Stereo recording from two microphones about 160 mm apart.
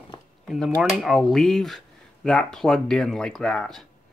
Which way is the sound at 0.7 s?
Centre (ahead or behind).